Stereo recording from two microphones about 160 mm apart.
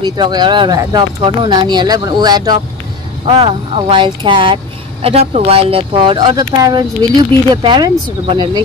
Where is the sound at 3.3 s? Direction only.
35° right (ahead or behind).